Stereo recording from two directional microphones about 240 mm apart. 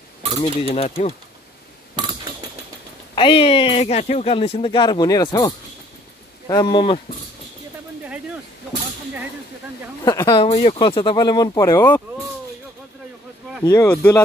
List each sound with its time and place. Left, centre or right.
0.4 s speech: left
2.0 s a sound: centre
3.2 s speech: left
10.0 s speech: centre
13.7 s speech: centre